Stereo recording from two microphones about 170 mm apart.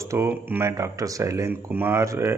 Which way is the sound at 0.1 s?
15° right (ahead or behind).